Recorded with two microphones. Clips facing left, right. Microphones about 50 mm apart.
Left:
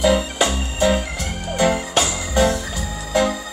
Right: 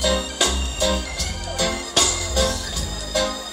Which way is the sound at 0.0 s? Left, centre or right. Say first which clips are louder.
Left 5 dB; left.